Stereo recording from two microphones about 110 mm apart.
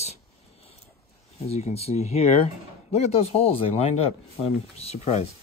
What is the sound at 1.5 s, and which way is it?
Speech, 70° left (ahead or behind).